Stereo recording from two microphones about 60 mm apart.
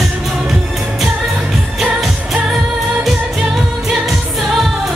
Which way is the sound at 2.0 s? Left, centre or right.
Centre.